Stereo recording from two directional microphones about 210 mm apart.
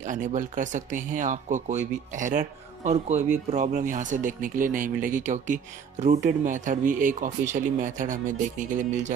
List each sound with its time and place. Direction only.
0.0 s speech: 35° right (ahead or behind)